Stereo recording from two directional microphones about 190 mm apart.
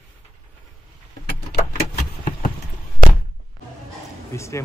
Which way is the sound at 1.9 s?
40° left (ahead or behind).